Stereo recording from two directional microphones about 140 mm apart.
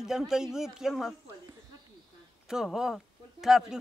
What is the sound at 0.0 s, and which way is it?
A man's voice, 5° right (ahead or behind).